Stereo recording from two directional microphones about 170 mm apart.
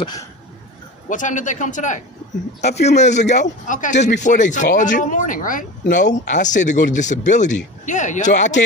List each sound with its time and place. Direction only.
0.0 s speech: 25° left (ahead or behind)
1.0 s a man's voice: 50° left (ahead or behind)